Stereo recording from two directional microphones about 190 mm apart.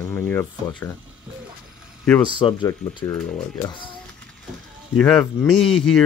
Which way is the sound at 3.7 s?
25° left (ahead or behind).